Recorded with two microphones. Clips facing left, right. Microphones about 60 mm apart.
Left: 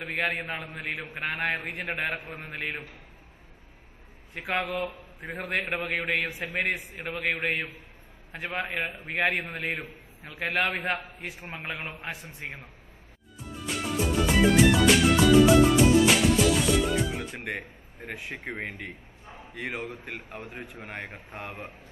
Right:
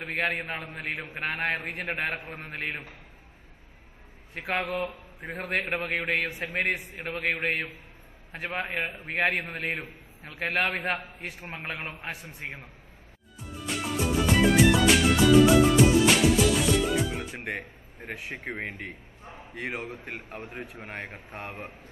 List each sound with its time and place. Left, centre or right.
0.0 s a man's voice: centre
4.3 s a man's voice: centre
7.5 s a man's voice: right
8.5 s a man's voice: centre
13.7 s music: centre
18.3 s a man's voice: centre
19.6 s a man's voice: centre